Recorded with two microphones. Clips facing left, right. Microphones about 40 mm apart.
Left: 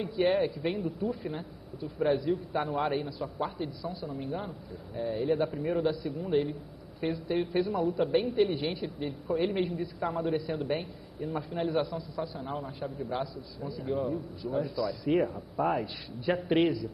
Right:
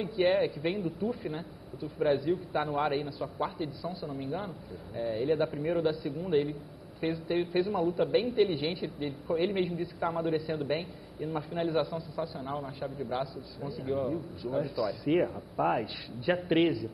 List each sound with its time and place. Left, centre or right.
0.0 s a man's voice: centre
1.2 s a man's voice: centre
8.8 s a man's voice: centre
9.4 s a man's voice: right